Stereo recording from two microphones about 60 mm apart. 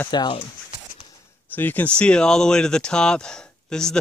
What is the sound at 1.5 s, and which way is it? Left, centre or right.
Speech, left.